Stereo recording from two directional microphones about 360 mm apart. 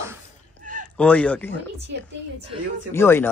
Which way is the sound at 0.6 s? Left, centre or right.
Right.